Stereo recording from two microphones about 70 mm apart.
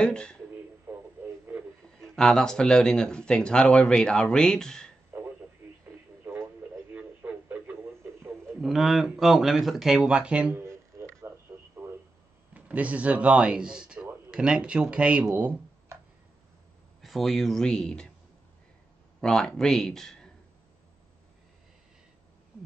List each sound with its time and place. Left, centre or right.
0.0 s speech: centre
0.9 s radio: right
2.0 s speech: centre
6.2 s music: right
6.9 s a sound: right
8.5 s speech: centre
10.5 s music: right
12.5 s speech: right
17.0 s speech: centre
19.2 s speech: centre